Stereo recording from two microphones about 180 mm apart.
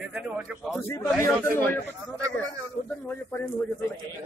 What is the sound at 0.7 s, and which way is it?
Speech, 15° left (ahead or behind).